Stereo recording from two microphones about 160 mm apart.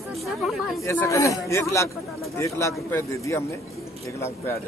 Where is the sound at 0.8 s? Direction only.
15° left (ahead or behind).